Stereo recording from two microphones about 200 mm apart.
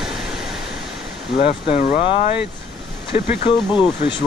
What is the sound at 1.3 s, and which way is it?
Speech, 35° left (ahead or behind).